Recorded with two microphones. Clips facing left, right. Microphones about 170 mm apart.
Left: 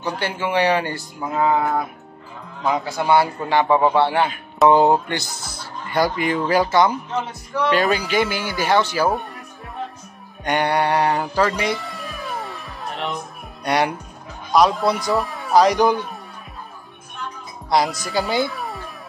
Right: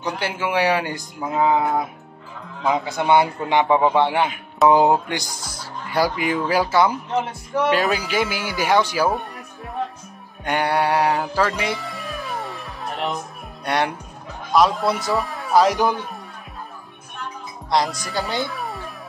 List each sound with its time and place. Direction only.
0.0 s speech: 10° right (ahead or behind)
3.0 s speech: 20° right (ahead or behind)
10.4 s music: 5° right (ahead or behind)
13.7 s speech: centre (ahead or behind)
17.6 s a child's voice: centre (ahead or behind)